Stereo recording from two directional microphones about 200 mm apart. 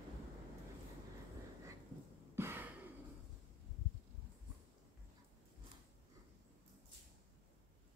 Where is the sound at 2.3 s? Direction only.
10° right (ahead or behind).